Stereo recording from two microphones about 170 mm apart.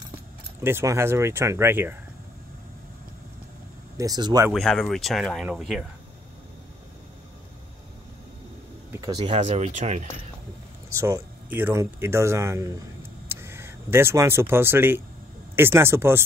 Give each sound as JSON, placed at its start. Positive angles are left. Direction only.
{"t": 0.7, "sound": "speech", "side_deg": -15}
{"t": 4.0, "sound": "speech", "side_deg": -20}
{"t": 4.5, "sound": "speech", "side_deg": 5}
{"t": 8.9, "sound": "speech", "side_deg": -25}
{"t": 10.9, "sound": "speech", "side_deg": -15}